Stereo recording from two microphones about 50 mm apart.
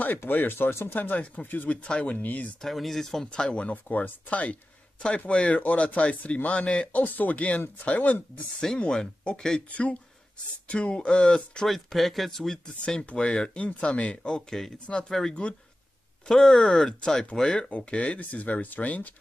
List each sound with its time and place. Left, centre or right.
0.3 s speech: left
0.9 s speech: left
1.9 s speech: left
2.1 s speech: left
2.6 s speech: centre
3.3 s speech: left
3.7 s speech: left
5.6 s speech: left
9.2 s speech: centre
9.7 s speech: left
11.6 s speech: centre
12.8 s speech: centre
16.3 s speech: centre
17.6 s speech: left